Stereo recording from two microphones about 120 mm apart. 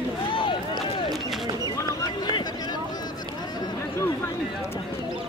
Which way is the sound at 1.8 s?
35° left (ahead or behind).